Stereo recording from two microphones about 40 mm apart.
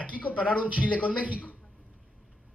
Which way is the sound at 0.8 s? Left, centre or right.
Left.